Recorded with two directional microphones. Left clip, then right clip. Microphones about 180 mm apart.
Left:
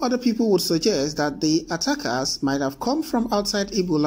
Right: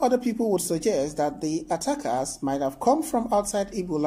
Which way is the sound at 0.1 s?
5° left (ahead or behind).